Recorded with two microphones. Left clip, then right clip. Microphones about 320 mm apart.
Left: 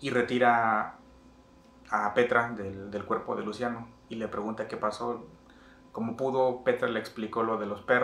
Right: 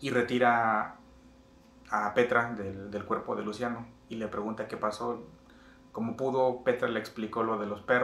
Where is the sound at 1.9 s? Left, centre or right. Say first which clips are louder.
Left 1 dB; centre.